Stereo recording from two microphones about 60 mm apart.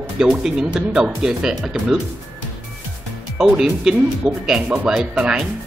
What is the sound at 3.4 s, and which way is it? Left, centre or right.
Speech, centre.